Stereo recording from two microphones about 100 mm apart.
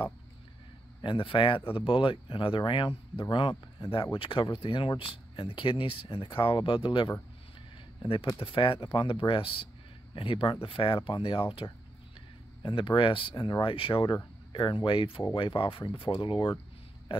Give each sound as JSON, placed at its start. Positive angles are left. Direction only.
{"t": 1.0, "sound": "speech", "side_deg": 60}